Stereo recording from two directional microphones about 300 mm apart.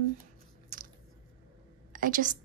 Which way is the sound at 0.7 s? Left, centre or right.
Right.